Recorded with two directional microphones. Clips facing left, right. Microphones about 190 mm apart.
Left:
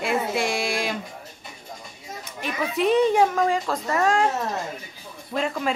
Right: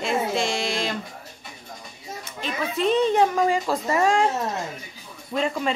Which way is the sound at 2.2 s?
15° left (ahead or behind).